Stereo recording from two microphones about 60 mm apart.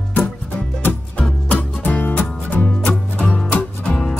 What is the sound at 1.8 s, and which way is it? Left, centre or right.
Music, left.